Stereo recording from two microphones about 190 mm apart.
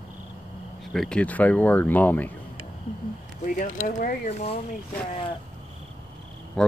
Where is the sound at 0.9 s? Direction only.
5° left (ahead or behind).